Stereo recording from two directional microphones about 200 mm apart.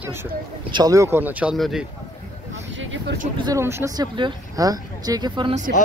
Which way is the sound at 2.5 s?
70° right (ahead or behind).